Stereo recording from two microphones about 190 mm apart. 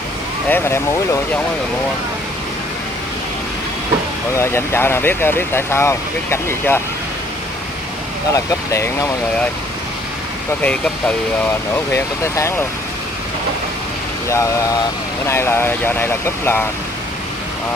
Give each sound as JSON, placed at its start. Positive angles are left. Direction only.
{"t": 0.5, "sound": "speech", "side_deg": 10}
{"t": 4.3, "sound": "speech", "side_deg": 15}
{"t": 8.3, "sound": "speech", "side_deg": 15}
{"t": 10.6, "sound": "speech", "side_deg": 5}
{"t": 14.3, "sound": "speech", "side_deg": 15}